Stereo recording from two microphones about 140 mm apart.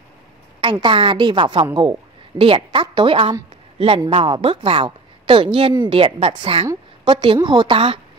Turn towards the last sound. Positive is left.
turn(degrees=-40)  # may be behind; listen again after turning